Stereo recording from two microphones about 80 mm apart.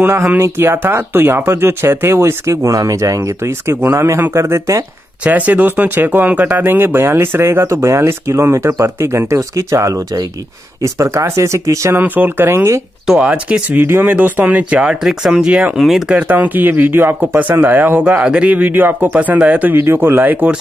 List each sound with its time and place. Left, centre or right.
0.4 s speech: right
5.2 s speech: centre; by 12.0 s right
12.0 s speech: right
13.0 s speech: centre
16.2 s speech: right
19.8 s speech: right